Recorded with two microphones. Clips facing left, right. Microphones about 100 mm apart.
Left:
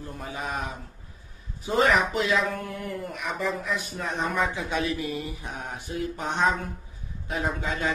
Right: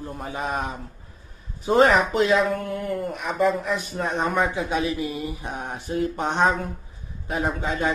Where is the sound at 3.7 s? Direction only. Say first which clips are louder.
Right 5 dB; 45° right (ahead or behind).